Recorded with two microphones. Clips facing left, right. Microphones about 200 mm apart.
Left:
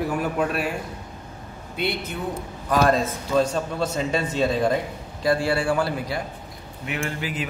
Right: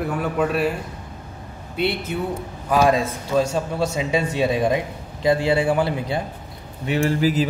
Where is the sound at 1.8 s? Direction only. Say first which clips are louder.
Right 4 dB; 5° right (ahead or behind); by 6.2 s 25° right (ahead or behind).